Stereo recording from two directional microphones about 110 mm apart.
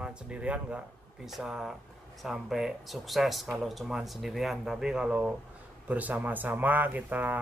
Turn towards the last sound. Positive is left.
turn(degrees=-15)  # may be behind; listen again after turning